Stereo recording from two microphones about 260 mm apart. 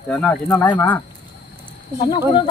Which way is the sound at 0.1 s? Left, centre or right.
Centre.